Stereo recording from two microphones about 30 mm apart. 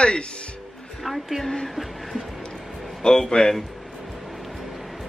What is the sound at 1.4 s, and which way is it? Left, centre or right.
Speech, centre.